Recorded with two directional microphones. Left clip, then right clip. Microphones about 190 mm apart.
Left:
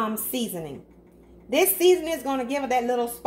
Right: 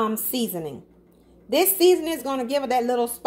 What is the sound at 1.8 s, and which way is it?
A woman's voice, 50° right (ahead or behind).